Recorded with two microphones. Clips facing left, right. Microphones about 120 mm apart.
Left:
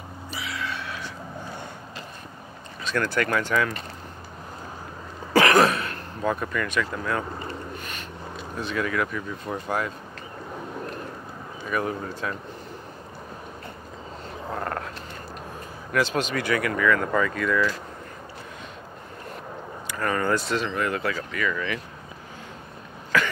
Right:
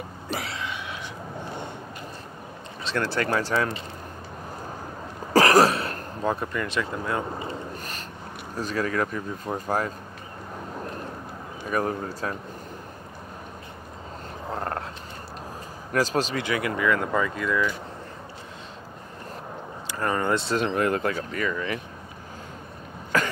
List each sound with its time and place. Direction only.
0.5 s a sound: 20° right (ahead or behind)
2.8 s speech: 30° right (ahead or behind)
5.3 s a sound: 35° right (ahead or behind)
7.7 s a sound: 40° right (ahead or behind)
8.5 s speech: 40° right (ahead or behind)
11.6 s speech: 35° right (ahead or behind)
14.5 s frog: 25° right (ahead or behind)
15.9 s speech: 35° right (ahead or behind)
16.3 s speech: 20° right (ahead or behind)
19.9 s speech: 25° right (ahead or behind)
20.5 s speech: 45° right (ahead or behind)
23.1 s cough: 40° right (ahead or behind)